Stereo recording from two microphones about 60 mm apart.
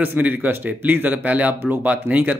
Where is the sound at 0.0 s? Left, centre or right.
Right.